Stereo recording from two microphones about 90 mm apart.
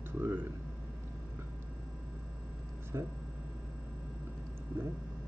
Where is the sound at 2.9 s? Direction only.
35° right (ahead or behind).